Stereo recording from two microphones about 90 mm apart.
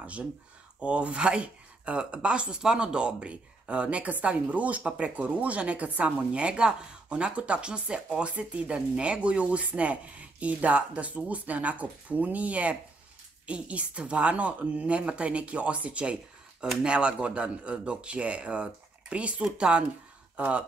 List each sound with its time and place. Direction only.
0.0 s speech: 15° right (ahead or behind)